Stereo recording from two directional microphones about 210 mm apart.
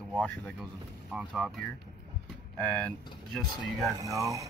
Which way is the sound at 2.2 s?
5° left (ahead or behind).